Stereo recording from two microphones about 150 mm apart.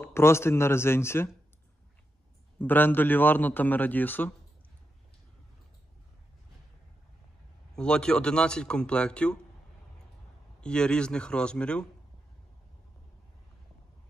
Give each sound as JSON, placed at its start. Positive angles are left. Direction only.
{"t": 0.0, "sound": "a man's voice", "side_deg": 15}
{"t": 2.6, "sound": "a man's voice", "side_deg": 15}
{"t": 7.7, "sound": "speech", "side_deg": 5}
{"t": 10.6, "sound": "a man's voice", "side_deg": 5}